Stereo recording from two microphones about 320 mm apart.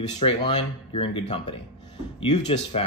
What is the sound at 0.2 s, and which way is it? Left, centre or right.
Speech, centre.